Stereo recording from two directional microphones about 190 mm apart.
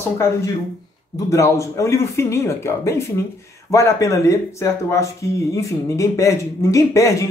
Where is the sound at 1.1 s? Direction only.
15° left (ahead or behind).